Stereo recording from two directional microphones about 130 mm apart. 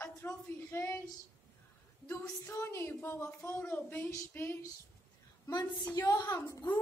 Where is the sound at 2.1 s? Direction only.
20° left (ahead or behind).